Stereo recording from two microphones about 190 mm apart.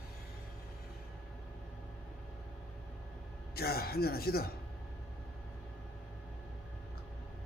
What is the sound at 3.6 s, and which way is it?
Speech, 55° left (ahead or behind).